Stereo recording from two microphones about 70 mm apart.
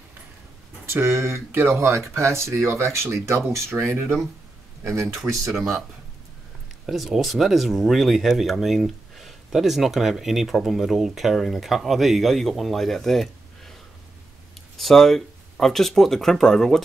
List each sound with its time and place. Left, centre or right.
0.8 s speech: right
5.1 s speech: centre
6.9 s speech: centre
14.8 s speech: centre